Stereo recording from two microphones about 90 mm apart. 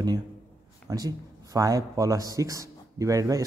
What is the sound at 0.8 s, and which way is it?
Speech, 40° right (ahead or behind).